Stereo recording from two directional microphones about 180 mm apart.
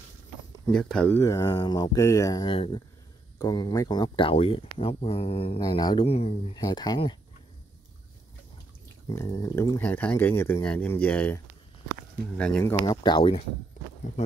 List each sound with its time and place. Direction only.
0.7 s speech: 5° left (ahead or behind); by 5.6 s 30° left (ahead or behind)
5.6 s speech: 20° left (ahead or behind)
6.6 s speech: 20° left (ahead or behind)
9.1 s speech: 15° left (ahead or behind)
12.8 s speech: 25° left (ahead or behind)